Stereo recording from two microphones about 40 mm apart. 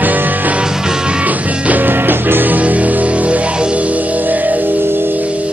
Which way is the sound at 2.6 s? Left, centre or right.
Right.